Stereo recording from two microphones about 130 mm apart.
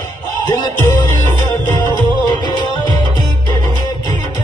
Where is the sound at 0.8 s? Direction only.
20° left (ahead or behind).